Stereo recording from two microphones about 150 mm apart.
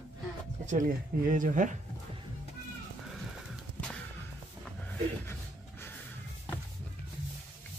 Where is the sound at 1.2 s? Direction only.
60° right (ahead or behind).